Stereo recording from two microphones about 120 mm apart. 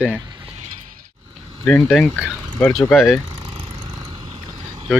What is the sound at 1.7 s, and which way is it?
Speech, 15° left (ahead or behind).